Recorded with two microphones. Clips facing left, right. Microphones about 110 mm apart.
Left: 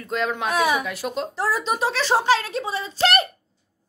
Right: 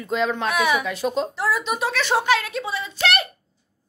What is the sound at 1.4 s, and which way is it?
Speech, 35° left (ahead or behind).